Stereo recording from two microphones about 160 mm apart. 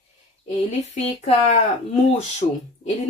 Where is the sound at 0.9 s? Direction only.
40° left (ahead or behind).